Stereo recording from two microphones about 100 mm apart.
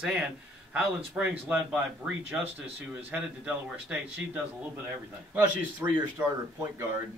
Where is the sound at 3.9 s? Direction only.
15° right (ahead or behind).